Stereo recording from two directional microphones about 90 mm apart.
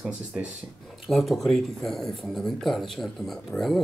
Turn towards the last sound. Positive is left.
turn(degrees=0)  # may be behind; listen again after turning